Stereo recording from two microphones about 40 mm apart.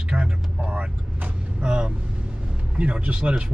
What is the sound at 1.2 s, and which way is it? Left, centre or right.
Vehicle, right.